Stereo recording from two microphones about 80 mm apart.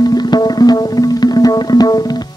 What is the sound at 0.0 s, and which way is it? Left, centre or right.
Music, left.